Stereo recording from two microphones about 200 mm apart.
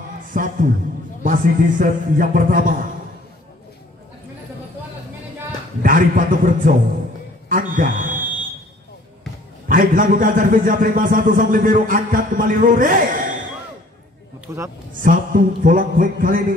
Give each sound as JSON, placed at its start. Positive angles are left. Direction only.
{"t": 0.3, "sound": "a sound", "side_deg": -40}
{"t": 1.2, "sound": "a man's voice", "side_deg": -45}
{"t": 5.8, "sound": "a man's voice", "side_deg": -40}
{"t": 7.4, "sound": "a sound", "side_deg": -45}
{"t": 9.7, "sound": "a man's voice", "side_deg": -40}
{"t": 14.5, "sound": "a man's voice", "side_deg": -15}
{"t": 15.0, "sound": "a man's voice", "side_deg": -40}